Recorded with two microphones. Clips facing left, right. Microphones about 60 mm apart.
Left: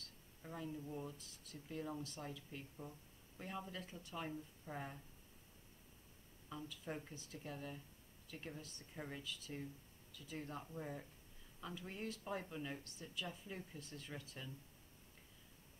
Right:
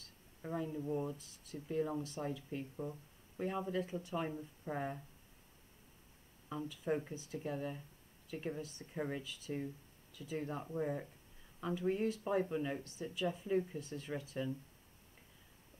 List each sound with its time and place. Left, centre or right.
0.4 s speech: right
1.1 s speech: centre
6.8 s speech: right
9.2 s speech: centre
13.7 s speech: centre